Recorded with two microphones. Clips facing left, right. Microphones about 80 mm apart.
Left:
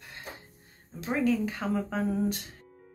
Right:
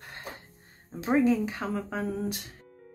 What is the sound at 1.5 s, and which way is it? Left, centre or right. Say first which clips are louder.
Speech: left 2 dB; centre.